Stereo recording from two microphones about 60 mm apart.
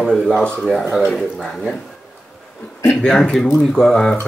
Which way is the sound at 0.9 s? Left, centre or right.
Centre.